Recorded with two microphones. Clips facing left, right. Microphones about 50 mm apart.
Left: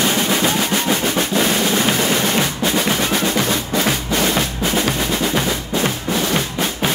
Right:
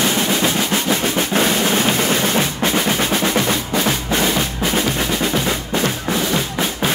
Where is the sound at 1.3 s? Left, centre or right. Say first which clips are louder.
Right 2 dB; right.